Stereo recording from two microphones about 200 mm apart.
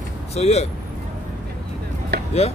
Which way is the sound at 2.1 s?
55° right (ahead or behind).